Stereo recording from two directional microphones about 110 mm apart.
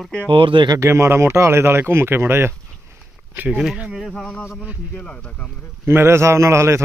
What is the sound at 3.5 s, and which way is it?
Speech, centre (ahead or behind).